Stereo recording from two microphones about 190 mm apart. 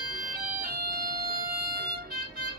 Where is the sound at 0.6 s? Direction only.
50° right (ahead or behind).